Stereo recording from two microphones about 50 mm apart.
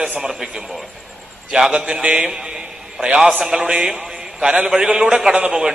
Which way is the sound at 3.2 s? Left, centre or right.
Centre.